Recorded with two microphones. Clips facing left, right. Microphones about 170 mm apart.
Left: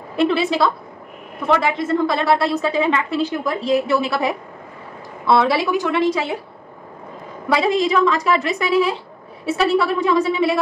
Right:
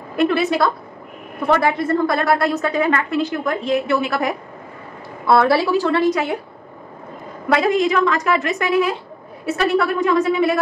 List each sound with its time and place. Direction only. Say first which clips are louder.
0.1 s a woman's voice: even; 30° left (ahead or behind)
5.4 s a woman's voice: right 2 dB; 20° left (ahead or behind)
7.6 s a woman's voice: left 1 dB; 30° left (ahead or behind)